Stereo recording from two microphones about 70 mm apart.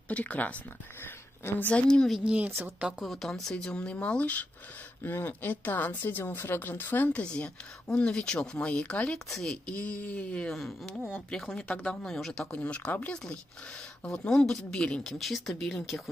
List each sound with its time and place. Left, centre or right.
0.1 s speech: left
1.0 s a sound: left
1.7 s speech: centre
2.2 s speech: centre
3.0 s speech: centre
9.3 s speech: centre
9.7 s speech: centre
10.5 s speech: centre
12.5 s speech: centre
14.0 s speech: centre